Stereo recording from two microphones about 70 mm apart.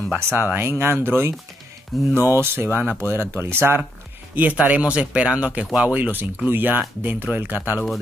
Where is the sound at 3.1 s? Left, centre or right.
Right.